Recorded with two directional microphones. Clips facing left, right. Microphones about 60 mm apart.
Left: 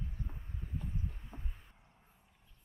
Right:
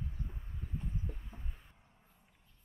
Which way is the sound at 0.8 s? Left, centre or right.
Centre.